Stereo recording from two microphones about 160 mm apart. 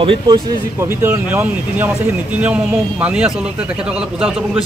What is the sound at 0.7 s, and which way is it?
Speech, 15° right (ahead or behind).